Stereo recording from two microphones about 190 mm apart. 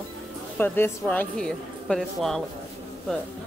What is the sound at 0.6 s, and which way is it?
Speech, 10° left (ahead or behind).